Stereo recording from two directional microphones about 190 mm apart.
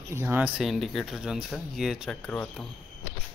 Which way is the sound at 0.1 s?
10° right (ahead or behind).